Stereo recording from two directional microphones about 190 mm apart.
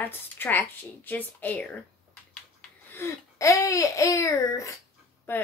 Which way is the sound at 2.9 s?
15° left (ahead or behind).